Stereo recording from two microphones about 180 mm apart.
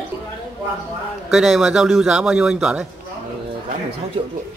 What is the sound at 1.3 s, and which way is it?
Speech, centre (ahead or behind).